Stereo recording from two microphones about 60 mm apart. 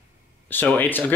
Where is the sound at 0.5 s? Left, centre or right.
Left.